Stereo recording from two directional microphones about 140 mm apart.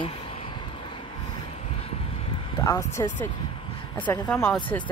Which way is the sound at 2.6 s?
20° left (ahead or behind).